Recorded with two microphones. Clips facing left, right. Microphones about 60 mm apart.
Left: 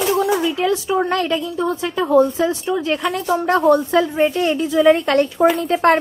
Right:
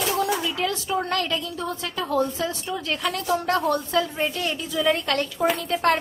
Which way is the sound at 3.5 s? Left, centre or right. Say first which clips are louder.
Left 13 dB; centre.